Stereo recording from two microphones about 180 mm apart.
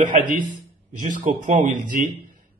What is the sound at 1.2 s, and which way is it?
A man's voice, 45° right (ahead or behind).